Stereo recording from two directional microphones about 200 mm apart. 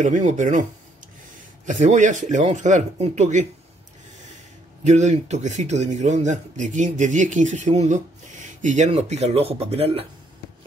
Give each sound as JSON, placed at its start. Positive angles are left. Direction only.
{"t": 0.0, "sound": "speech", "side_deg": -35}
{"t": 1.7, "sound": "speech", "side_deg": -35}
{"t": 4.8, "sound": "speech", "side_deg": -35}